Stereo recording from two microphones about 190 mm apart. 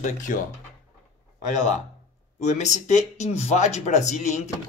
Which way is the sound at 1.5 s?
40° left (ahead or behind).